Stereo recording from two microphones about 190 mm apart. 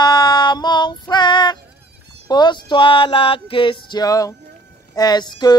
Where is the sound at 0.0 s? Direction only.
20° left (ahead or behind).